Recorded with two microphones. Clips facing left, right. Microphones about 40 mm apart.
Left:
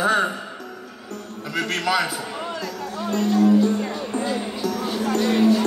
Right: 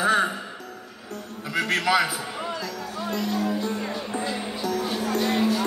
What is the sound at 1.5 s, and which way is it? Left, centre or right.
Speech, centre.